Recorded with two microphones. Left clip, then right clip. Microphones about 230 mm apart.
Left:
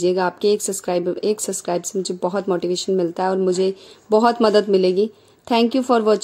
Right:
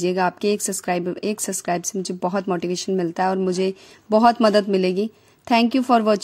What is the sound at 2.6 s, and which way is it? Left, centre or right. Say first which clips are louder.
Speech: left 3 dB; right.